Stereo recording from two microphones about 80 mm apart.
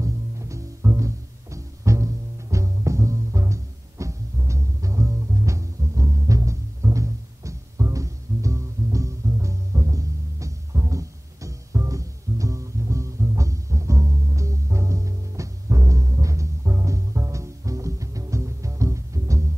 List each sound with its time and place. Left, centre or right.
0.0 s music: right